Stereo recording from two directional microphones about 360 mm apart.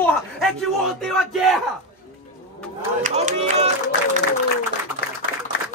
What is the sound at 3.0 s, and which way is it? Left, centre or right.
Speech, centre.